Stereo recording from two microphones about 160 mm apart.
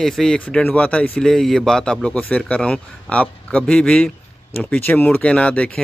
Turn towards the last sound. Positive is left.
turn(degrees=5)  # may be behind; listen again after turning